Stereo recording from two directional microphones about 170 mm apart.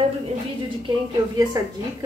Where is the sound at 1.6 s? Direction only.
20° right (ahead or behind).